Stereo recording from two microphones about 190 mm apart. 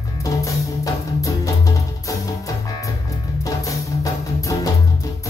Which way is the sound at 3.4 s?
15° left (ahead or behind).